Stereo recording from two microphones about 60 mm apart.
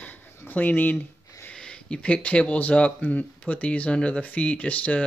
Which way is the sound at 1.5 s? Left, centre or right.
Centre.